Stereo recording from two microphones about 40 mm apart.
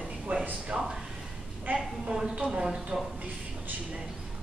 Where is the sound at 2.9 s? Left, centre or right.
Right.